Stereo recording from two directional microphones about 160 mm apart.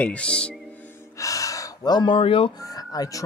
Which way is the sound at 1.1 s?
20° left (ahead or behind).